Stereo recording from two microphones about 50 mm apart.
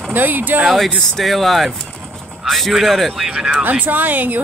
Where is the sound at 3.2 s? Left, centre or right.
Centre.